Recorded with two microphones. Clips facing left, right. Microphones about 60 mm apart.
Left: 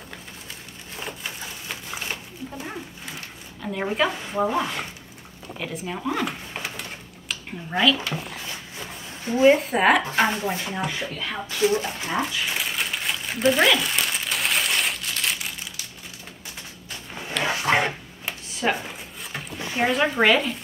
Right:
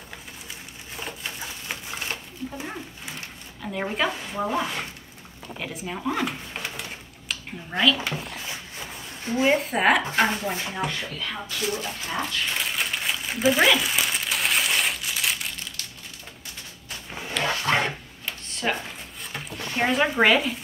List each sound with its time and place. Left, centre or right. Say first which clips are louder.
0.9 s a sound: left 1 dB; centre
2.5 s dog: even; centre
3.6 s speech: left 2 dB; centre
9.4 s speech: left 4 dB; centre
11.4 s speech: left 9 dB; left
12.3 s crumpling: even; centre
17.1 s a sound: left 1 dB; centre
17.4 s a sound: left 2 dB; centre
19.3 s speech: left 1 dB; centre